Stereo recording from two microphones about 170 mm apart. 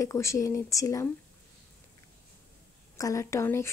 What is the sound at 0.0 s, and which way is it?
Speech, 20° left (ahead or behind).